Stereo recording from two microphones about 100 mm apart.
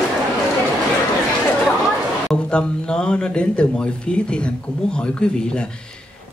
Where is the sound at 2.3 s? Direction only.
10° left (ahead or behind).